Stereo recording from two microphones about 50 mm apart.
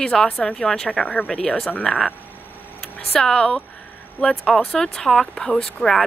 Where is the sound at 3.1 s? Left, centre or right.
Centre.